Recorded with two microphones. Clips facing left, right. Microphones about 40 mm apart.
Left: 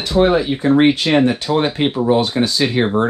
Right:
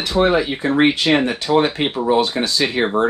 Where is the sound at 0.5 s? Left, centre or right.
Right.